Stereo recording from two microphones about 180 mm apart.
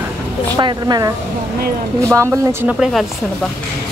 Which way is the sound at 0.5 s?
25° right (ahead or behind).